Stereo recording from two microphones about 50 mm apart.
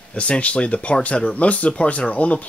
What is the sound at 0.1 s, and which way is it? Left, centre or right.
Speech, left.